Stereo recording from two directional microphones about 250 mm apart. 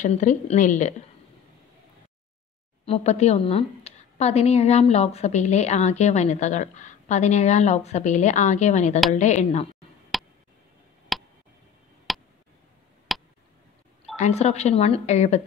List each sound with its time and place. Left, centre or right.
0.0 s a woman's voice: left
2.8 s a woman's voice: left
10.1 s tick: centre
12.1 s a sound: centre
14.1 s a woman's voice: left